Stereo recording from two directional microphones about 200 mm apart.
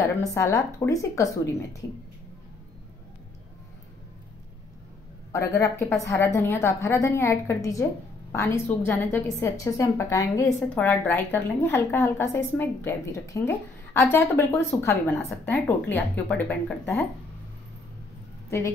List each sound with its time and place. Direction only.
0.0 s a woman's voice: 15° left (ahead or behind)
5.3 s a woman's voice: 15° left (ahead or behind)